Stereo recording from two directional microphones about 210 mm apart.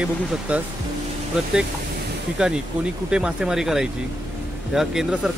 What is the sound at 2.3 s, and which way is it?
Speech, 5° right (ahead or behind).